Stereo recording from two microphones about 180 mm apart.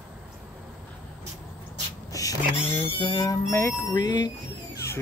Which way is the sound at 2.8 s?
25° left (ahead or behind).